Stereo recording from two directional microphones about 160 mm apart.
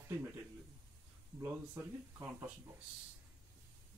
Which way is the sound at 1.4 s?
10° right (ahead or behind).